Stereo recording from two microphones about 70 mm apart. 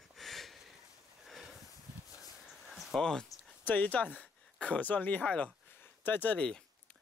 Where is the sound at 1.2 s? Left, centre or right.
Centre.